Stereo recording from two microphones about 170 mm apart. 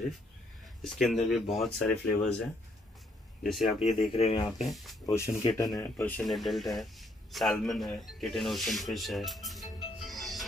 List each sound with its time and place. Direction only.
0.8 s speech: centre (ahead or behind)
4.1 s speech: 35° left (ahead or behind)
4.6 s speech: centre (ahead or behind)
5.0 s speech: 15° left (ahead or behind)
6.2 s a man's voice: centre (ahead or behind)